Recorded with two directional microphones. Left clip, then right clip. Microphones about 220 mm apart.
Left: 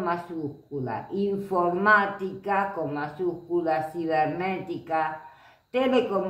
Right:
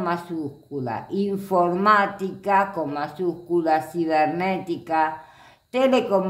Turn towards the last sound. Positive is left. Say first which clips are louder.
# right 4 dB
turn(degrees=-50)  # may be behind; listen again after turning